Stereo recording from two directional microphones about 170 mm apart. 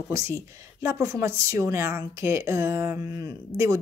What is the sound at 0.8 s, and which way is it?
Speech, 20° right (ahead or behind).